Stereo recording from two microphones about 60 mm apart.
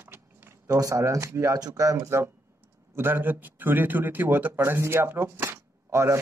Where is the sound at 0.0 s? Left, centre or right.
Right.